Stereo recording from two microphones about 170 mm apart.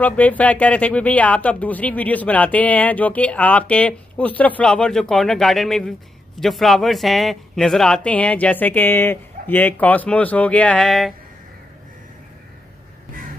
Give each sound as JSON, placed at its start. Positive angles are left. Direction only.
{"t": 0.0, "sound": "speech", "side_deg": 10}